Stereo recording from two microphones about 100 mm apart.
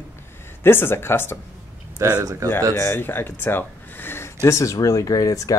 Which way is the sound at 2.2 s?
35° right (ahead or behind).